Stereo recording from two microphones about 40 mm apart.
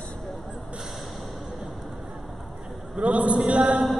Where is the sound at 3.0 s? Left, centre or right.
Right.